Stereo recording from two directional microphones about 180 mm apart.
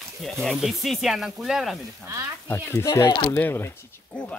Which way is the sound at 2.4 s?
15° left (ahead or behind).